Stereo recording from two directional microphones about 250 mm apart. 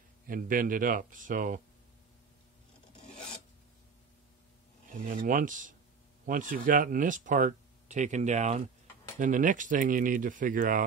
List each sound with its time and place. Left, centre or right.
0.3 s speech: right
5.0 s speech: right